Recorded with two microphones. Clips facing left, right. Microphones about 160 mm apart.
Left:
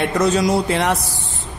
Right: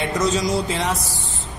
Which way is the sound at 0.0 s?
60° left (ahead or behind).